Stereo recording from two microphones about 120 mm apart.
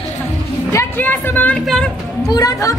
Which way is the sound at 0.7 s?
20° left (ahead or behind).